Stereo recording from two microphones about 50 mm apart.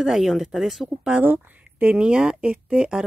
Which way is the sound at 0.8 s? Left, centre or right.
Centre.